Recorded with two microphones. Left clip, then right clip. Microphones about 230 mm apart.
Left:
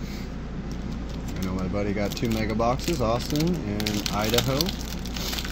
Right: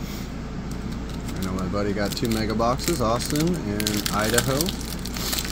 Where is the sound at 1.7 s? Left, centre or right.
Centre.